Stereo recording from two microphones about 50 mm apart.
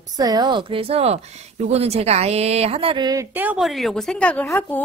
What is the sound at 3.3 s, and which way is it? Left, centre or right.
Speech, right.